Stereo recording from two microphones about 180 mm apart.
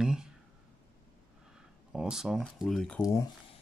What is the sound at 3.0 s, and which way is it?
Speech, 20° left (ahead or behind).